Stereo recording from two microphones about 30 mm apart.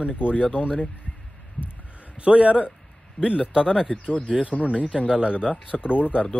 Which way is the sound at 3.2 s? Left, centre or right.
Left.